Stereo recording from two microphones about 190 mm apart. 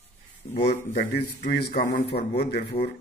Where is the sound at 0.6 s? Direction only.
55° left (ahead or behind).